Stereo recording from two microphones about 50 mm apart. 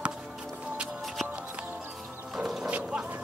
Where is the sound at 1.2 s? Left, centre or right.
Right.